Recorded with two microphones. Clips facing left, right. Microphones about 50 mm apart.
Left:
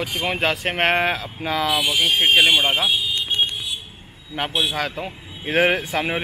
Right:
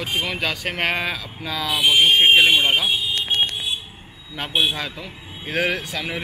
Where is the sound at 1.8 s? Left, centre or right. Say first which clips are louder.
Right 4 dB; centre.